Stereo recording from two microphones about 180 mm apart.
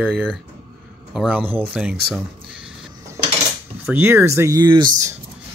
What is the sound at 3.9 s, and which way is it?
Speech, 10° right (ahead or behind).